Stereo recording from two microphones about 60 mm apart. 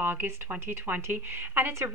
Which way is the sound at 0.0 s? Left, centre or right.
Right.